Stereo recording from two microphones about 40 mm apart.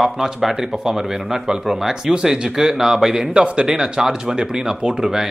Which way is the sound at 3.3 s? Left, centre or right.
Right.